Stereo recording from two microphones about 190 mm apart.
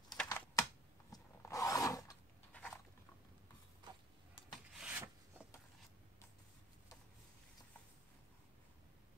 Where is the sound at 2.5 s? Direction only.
5° left (ahead or behind).